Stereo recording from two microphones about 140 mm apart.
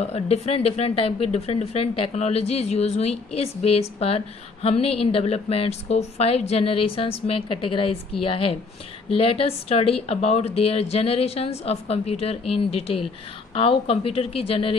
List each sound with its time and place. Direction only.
0.0 s speech: 50° left (ahead or behind)